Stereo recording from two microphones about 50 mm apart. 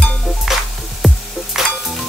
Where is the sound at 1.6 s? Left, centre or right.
Centre.